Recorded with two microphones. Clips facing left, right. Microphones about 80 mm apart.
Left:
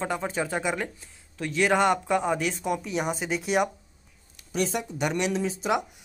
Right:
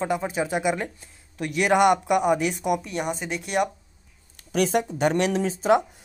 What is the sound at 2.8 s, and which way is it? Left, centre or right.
Speech, centre.